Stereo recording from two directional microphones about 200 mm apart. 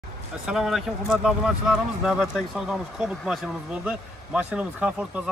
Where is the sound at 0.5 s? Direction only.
Centre (ahead or behind).